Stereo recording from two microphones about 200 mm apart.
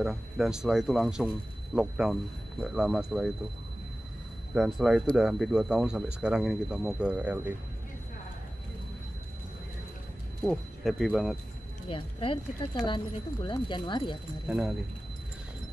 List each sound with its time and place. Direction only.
0.0 s speech: centre (ahead or behind)
4.6 s speech: 5° right (ahead or behind)
10.4 s speech: centre (ahead or behind)
11.9 s speech: 25° left (ahead or behind)